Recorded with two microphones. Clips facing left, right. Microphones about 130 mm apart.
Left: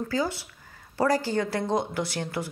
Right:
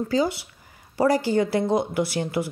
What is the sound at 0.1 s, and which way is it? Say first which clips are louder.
A woman's voice: right 7 dB; 15° right (ahead or behind).